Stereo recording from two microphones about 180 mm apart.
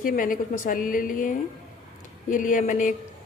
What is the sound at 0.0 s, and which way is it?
A woman's voice, 50° left (ahead or behind).